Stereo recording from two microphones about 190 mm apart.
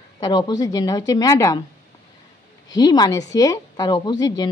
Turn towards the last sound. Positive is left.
turn(degrees=20)  # may be behind; listen again after turning